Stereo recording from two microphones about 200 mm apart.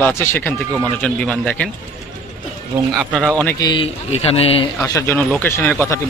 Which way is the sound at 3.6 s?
25° left (ahead or behind).